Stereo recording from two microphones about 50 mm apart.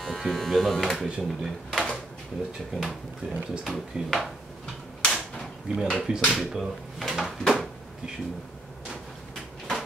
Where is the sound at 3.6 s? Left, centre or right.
Centre.